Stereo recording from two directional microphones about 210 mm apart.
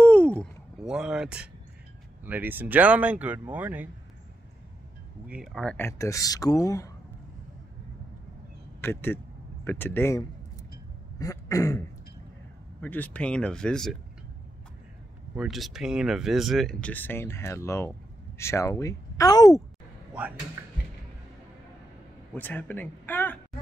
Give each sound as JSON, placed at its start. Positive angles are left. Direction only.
{"t": 0.0, "sound": "a sound", "side_deg": 5}
{"t": 2.2, "sound": "speech", "side_deg": -10}
{"t": 5.3, "sound": "speech", "side_deg": 0}
{"t": 8.8, "sound": "speech", "side_deg": 10}
{"t": 11.1, "sound": "throat clearing", "side_deg": 15}
{"t": 12.8, "sound": "speech", "side_deg": 10}
{"t": 15.3, "sound": "speech", "side_deg": 0}
{"t": 20.6, "sound": "a sound", "side_deg": -10}
{"t": 22.3, "sound": "speech", "side_deg": 10}